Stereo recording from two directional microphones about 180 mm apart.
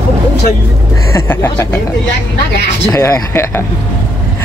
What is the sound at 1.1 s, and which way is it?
Speech, 10° left (ahead or behind).